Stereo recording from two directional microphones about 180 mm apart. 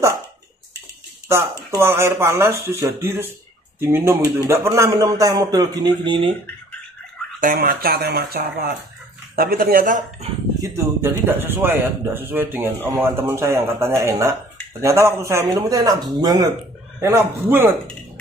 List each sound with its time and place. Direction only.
1.3 s speech: 15° right (ahead or behind)
7.3 s speech: 50° right (ahead or behind)
10.6 s speech: 15° right (ahead or behind)